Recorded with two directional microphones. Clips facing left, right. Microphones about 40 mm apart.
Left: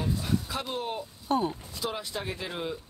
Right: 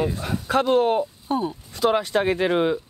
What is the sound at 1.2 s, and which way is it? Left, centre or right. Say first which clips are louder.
Speech: right 3 dB; centre.